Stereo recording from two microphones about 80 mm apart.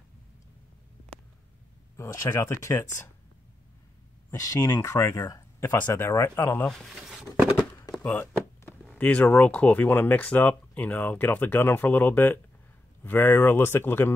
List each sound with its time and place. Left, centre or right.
2.2 s speech: left
4.5 s speech: left
6.7 s speech: centre
7.0 s a sound: centre
7.5 s a sound: left
8.0 s speech: centre